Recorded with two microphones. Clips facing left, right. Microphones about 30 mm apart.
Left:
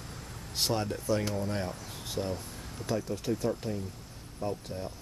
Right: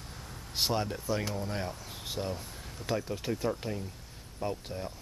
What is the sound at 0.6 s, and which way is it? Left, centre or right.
Speech, centre.